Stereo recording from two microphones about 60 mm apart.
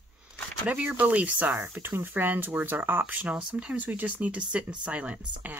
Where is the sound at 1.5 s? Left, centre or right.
Right.